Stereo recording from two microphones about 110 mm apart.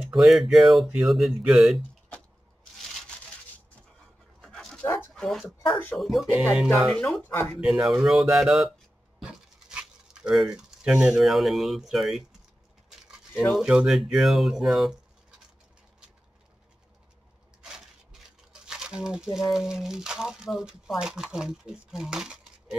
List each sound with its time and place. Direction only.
0.0 s speech: centre (ahead or behind)
4.4 s dog: 5° left (ahead or behind)
5.1 s speech: 5° left (ahead or behind)
7.2 s speech: 15° left (ahead or behind)
7.6 s speech: 5° right (ahead or behind)
9.2 s a sound: 5° right (ahead or behind)
13.5 s speech: 5° right (ahead or behind)
17.6 s speech: 5° right (ahead or behind)